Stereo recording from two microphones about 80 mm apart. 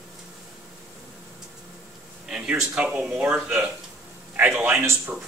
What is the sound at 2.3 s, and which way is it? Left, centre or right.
Speech, centre.